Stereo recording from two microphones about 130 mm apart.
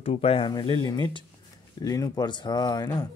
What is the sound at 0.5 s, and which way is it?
Speech, 35° left (ahead or behind).